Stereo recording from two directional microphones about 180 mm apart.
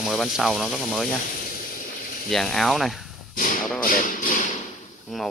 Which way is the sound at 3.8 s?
50° left (ahead or behind).